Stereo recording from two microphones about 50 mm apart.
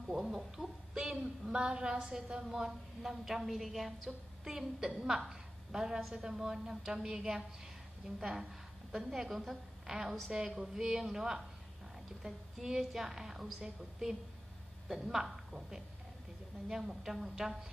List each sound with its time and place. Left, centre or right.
0.0 s a woman's voice: centre
16.6 s a woman's voice: centre